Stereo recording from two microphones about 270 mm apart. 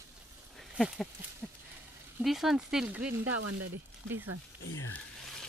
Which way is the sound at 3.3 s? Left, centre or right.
Right.